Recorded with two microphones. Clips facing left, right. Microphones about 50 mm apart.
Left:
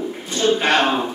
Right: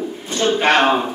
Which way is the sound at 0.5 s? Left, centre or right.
Right.